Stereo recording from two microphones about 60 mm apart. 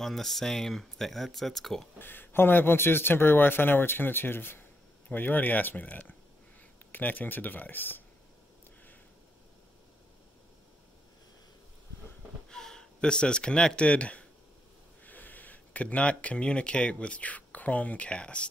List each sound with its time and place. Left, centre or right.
0.0 s speech: centre
2.0 s speech: left
12.4 s speech: centre